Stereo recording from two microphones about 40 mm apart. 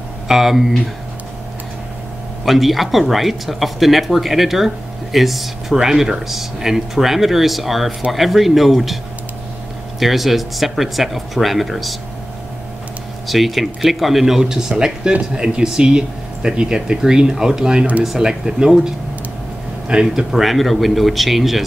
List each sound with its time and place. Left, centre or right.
0.3 s speech: centre
2.4 s speech: centre
9.9 s speech: centre
13.3 s speech: centre; by 20.2 s right
20.2 s speech: centre